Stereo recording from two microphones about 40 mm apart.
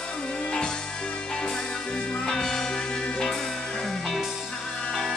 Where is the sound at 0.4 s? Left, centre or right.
Left.